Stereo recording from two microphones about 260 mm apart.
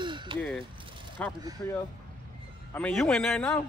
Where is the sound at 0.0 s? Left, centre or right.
Centre.